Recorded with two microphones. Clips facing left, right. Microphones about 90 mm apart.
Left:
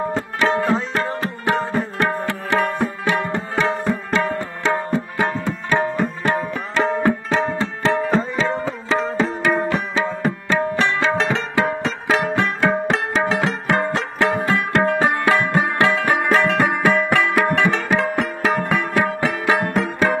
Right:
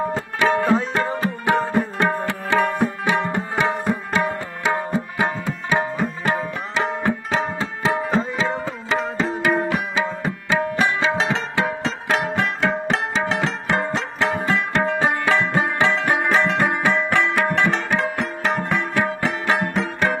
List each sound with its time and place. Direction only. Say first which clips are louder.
0.1 s music: even; 20° right (ahead or behind)
3.1 s tabla: even; 15° right (ahead or behind); by 17.5 s centre (ahead or behind)
17.6 s sitar: left 2 dB; centre (ahead or behind)
18.2 s music: left 2 dB; centre (ahead or behind)